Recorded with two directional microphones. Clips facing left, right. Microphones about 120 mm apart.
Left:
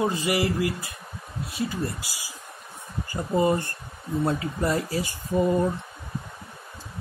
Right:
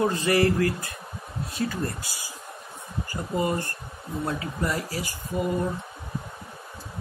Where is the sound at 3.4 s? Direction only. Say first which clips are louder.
Left 4 dB; 25° left (ahead or behind).